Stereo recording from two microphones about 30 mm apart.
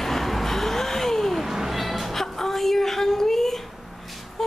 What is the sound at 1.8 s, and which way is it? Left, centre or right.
Music, centre.